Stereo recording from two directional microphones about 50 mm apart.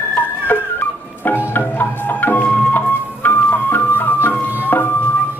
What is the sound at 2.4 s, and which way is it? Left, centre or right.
Music, left.